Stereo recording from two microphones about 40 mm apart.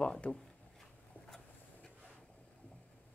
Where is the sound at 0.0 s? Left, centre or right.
Left.